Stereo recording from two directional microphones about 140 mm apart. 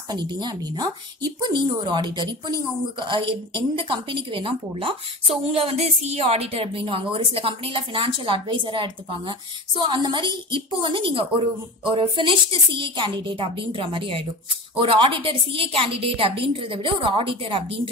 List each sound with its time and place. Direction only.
0.1 s a woman's voice: 30° right (ahead or behind)